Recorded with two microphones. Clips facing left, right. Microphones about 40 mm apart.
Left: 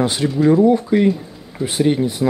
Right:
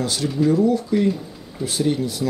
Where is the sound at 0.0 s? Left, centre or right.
Left.